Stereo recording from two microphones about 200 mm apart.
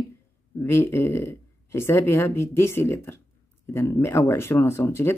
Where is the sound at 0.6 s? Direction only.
10° left (ahead or behind).